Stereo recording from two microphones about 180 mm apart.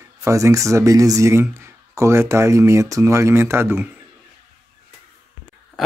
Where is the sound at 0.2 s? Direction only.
15° right (ahead or behind).